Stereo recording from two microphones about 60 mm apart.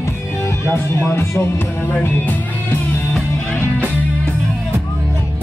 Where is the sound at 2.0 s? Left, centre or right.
Left.